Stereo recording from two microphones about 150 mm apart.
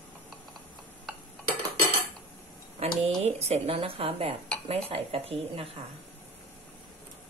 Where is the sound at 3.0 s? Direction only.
45° right (ahead or behind).